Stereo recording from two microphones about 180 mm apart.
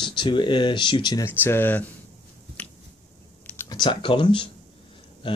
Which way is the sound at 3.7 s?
25° left (ahead or behind).